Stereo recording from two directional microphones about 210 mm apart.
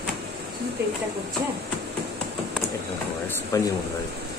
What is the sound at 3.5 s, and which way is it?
Speech, 15° left (ahead or behind).